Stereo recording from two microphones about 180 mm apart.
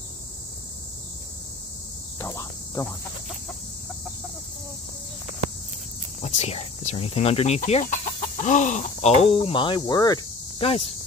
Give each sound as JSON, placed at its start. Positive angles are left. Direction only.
{"t": 2.1, "sound": "cricket", "side_deg": 15}
{"t": 6.2, "sound": "speech", "side_deg": 35}